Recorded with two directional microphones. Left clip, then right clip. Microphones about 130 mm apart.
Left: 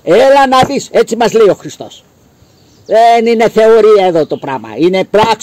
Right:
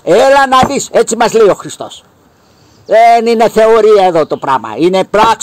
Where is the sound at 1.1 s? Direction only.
15° left (ahead or behind).